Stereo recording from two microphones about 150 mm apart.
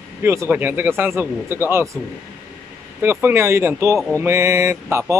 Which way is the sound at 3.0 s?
15° right (ahead or behind).